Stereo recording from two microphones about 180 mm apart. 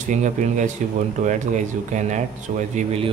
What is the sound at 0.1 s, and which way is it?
Speech, 40° right (ahead or behind).